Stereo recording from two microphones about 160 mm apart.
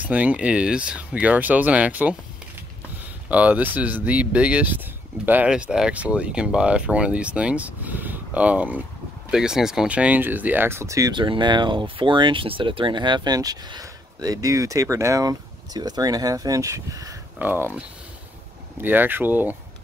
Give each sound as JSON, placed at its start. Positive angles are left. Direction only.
{"t": 0.0, "sound": "speech", "side_deg": -10}
{"t": 3.3, "sound": "speech", "side_deg": -10}